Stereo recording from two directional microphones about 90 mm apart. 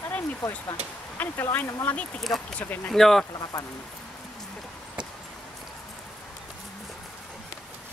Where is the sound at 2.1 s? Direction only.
Centre (ahead or behind).